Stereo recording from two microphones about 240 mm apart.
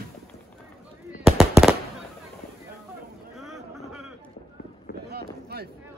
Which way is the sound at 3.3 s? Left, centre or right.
Centre.